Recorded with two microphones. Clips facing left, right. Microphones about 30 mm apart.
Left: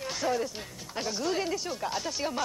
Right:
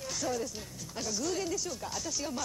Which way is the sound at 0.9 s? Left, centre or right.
Left.